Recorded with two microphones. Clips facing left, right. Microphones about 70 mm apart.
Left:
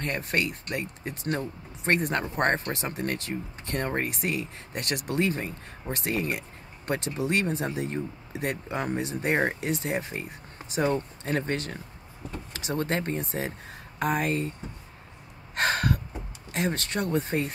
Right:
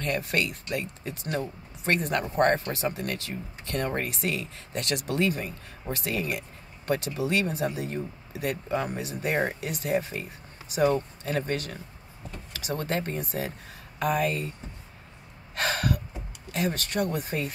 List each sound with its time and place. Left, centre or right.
0.0 s speech: left
15.5 s gasp: left
16.5 s speech: left